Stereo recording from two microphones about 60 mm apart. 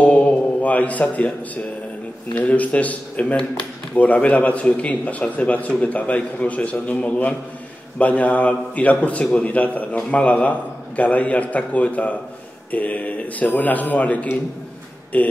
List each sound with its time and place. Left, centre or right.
0.0 s music: left
2.3 s a man's voice: left